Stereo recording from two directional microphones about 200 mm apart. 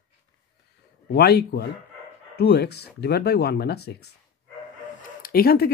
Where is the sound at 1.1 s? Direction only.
55° left (ahead or behind).